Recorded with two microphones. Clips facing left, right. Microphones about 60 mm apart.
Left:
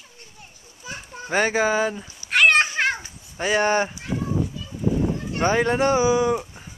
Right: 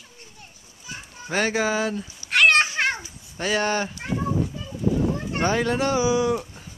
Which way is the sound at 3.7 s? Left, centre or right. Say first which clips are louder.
Left 4 dB; left.